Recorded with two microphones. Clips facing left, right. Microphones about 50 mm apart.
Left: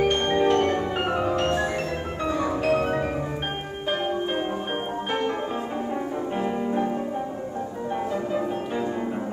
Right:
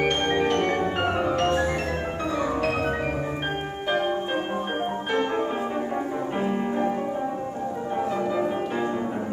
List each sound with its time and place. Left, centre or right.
0.2 s music: right
2.6 s music: right
8.1 s music: right